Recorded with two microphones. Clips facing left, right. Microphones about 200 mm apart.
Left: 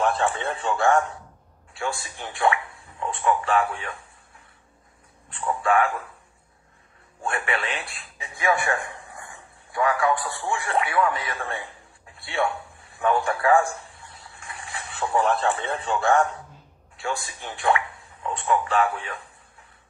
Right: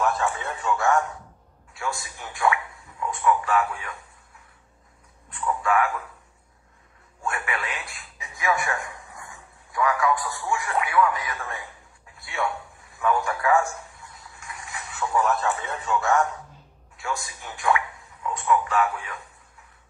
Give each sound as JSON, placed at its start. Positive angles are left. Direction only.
{"t": 0.0, "sound": "a man's voice", "side_deg": 30}
{"t": 5.3, "sound": "a man's voice", "side_deg": 30}
{"t": 7.2, "sound": "speech", "side_deg": 30}
{"t": 12.2, "sound": "a sound", "side_deg": 30}
{"t": 16.9, "sound": "speech", "side_deg": 30}